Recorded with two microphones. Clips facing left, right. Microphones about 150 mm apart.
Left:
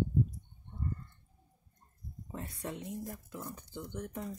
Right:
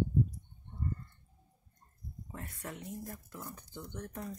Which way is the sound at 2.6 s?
20° left (ahead or behind).